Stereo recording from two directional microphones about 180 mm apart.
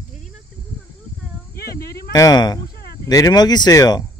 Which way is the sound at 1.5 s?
55° left (ahead or behind).